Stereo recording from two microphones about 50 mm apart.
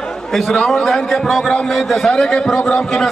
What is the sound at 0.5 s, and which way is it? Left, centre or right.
A man's voice, centre.